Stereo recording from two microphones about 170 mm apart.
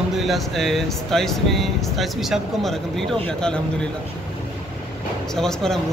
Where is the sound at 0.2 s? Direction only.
Centre (ahead or behind).